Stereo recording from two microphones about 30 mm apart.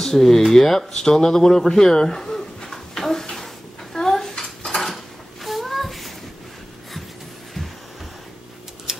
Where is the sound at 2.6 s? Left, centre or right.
Centre.